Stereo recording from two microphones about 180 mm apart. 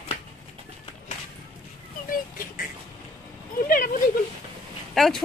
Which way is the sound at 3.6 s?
50° left (ahead or behind).